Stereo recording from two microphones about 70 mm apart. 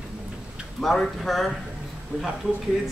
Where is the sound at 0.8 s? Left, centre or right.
Centre.